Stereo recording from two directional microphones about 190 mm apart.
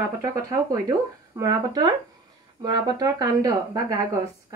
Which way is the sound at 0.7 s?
20° right (ahead or behind).